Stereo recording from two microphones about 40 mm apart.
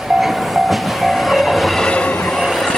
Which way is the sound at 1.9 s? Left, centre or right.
Left.